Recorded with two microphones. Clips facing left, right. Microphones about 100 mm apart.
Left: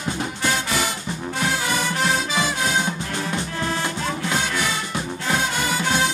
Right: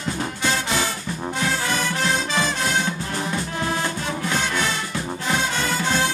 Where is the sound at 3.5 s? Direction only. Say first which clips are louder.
Right 1 dB; 20° right (ahead or behind).